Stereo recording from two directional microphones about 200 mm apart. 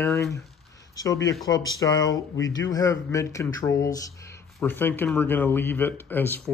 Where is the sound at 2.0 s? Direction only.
70° left (ahead or behind).